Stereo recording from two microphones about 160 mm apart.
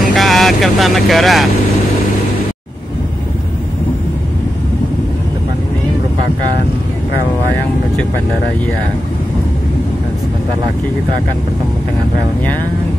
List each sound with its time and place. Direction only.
0.1 s speech: centre (ahead or behind)